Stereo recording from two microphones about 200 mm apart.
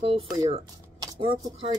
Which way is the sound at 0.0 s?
30° right (ahead or behind).